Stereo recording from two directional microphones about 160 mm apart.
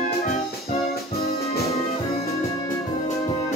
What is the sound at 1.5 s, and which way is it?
Music, 40° left (ahead or behind).